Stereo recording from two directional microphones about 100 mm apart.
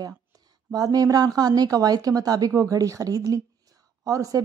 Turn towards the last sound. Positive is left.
turn(degrees=-35)  # may be behind; listen again after turning